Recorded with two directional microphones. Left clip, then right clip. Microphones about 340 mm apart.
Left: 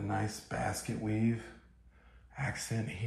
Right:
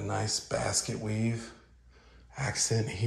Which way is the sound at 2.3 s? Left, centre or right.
Centre.